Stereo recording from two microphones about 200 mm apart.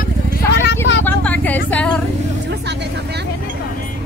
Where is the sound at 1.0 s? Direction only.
10° left (ahead or behind).